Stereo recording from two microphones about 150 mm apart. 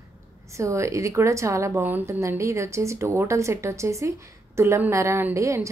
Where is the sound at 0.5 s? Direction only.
20° right (ahead or behind).